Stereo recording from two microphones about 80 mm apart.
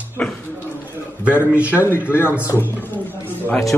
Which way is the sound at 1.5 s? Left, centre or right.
Centre.